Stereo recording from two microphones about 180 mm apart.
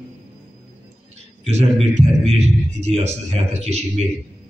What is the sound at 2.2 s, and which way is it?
A man's voice, 35° right (ahead or behind).